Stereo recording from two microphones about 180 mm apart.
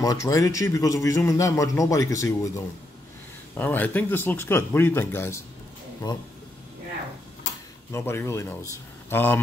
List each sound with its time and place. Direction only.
0.0 s speech: 20° left (ahead or behind)
6.0 s speech: 25° left (ahead or behind)
7.9 s speech: 15° left (ahead or behind)